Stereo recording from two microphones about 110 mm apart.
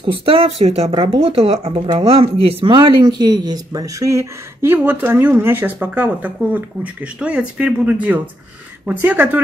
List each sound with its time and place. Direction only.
0.0 s speech: 55° right (ahead or behind)
2.4 s speech: 45° right (ahead or behind); by 9.4 s 15° right (ahead or behind)